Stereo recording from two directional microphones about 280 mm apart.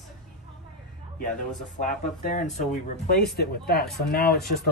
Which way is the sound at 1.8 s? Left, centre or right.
Left.